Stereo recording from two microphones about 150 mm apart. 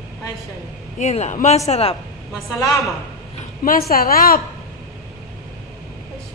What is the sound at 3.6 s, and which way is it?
Speech, 80° left.